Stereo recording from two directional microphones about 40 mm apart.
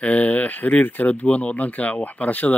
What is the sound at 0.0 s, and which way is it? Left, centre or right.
Speech, left.